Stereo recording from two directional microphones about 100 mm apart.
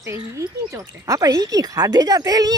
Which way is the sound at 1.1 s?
35° right (ahead or behind).